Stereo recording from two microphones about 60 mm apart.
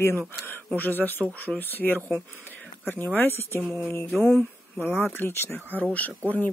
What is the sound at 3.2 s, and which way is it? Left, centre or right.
Speech, left.